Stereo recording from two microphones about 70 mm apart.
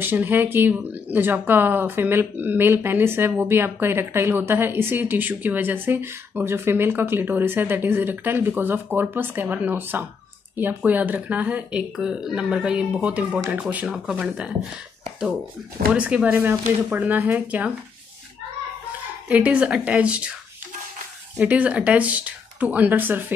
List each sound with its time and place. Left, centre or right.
0.0 s speech: right
13.8 s speech: centre
15.9 s speech: centre
16.3 s speech: right
19.2 s speech: right
21.4 s speech: right